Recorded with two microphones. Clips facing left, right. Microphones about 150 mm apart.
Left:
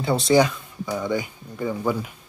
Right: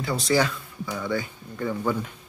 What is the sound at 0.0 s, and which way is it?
Speech, 25° left (ahead or behind).